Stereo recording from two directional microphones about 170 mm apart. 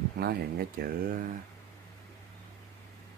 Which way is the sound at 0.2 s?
65° right (ahead or behind).